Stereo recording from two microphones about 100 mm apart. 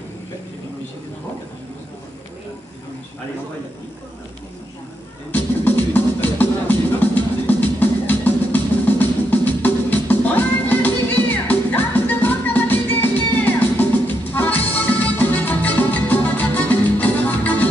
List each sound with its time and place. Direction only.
5.3 s music: 20° left (ahead or behind)